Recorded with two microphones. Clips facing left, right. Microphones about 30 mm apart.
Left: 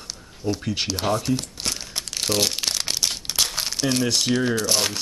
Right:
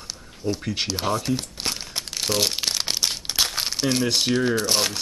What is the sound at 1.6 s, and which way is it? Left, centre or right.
Crumpling, centre.